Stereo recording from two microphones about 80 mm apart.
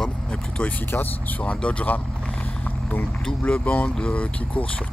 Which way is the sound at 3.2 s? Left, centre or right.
Centre.